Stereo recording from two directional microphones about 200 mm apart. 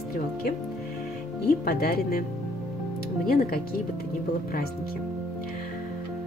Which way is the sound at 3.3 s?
50° left (ahead or behind).